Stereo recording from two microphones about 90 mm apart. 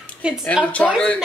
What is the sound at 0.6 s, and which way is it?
Speech, 15° left (ahead or behind).